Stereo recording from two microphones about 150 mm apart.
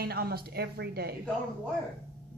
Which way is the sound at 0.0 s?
90° right.